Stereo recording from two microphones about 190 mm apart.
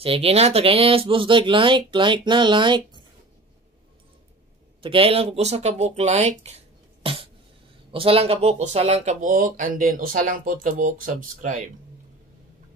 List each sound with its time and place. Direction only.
0.0 s speech: 30° right (ahead or behind)
4.8 s speech: 30° right (ahead or behind)